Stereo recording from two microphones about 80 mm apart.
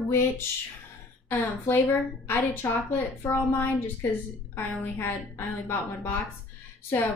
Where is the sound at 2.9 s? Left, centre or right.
Left.